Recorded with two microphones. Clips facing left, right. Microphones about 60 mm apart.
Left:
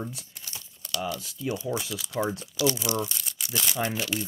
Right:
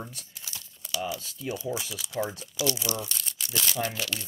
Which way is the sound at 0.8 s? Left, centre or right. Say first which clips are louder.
Left 1 dB; centre.